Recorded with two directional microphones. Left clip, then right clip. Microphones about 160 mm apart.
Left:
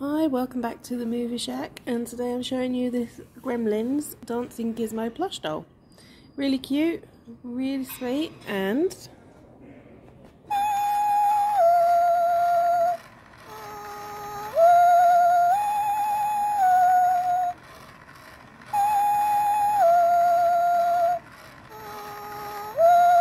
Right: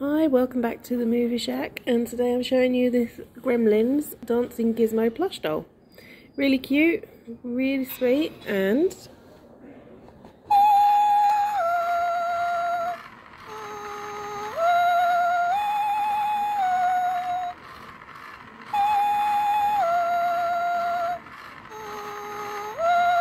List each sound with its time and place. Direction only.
0.0 s speech: 30° left (ahead or behind)
10.5 s music: 20° left (ahead or behind)
11.2 s music: centre (ahead or behind)
11.9 s music: 20° left (ahead or behind)
13.7 s vehicle: 5° right (ahead or behind)
14.5 s music: 25° left (ahead or behind)
15.5 s music: centre (ahead or behind)
16.5 s music: 25° left (ahead or behind)
18.7 s music: centre (ahead or behind)
19.8 s music: 25° left (ahead or behind)
22.0 s vehicle: centre (ahead or behind)